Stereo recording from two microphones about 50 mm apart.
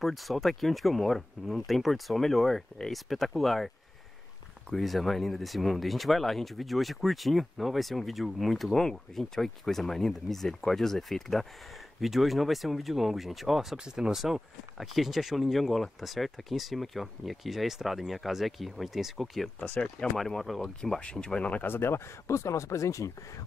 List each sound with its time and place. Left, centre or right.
0.0 s speech: centre
19.6 s speech: left
20.2 s speech: centre
21.0 s speech: centre
21.6 s speech: left